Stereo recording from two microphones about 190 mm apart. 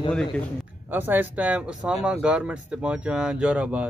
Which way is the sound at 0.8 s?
10° right (ahead or behind).